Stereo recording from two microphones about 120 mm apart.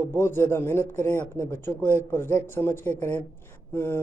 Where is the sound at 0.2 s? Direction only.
20° left (ahead or behind).